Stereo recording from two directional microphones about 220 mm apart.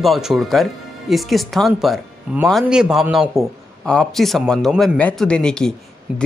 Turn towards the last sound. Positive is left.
turn(degrees=5)  # may be behind; listen again after turning